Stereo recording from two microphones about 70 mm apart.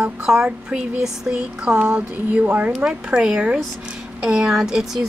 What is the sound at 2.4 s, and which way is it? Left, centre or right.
Speech, right.